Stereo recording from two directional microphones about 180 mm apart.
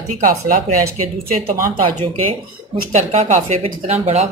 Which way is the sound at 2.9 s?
40° right (ahead or behind).